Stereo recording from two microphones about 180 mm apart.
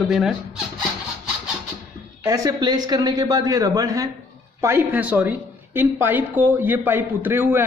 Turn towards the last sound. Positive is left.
turn(degrees=-10)  # may be behind; listen again after turning